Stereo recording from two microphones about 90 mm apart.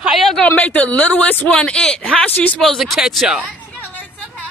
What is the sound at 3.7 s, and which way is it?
Vehicle, 20° left (ahead or behind).